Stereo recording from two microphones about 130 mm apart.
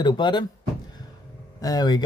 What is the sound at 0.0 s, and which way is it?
Speech, 35° left (ahead or behind).